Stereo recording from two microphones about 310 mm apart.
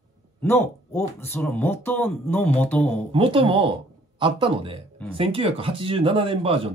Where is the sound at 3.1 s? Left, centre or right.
Centre.